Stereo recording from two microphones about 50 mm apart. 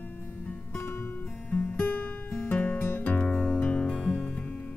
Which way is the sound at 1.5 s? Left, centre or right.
Left.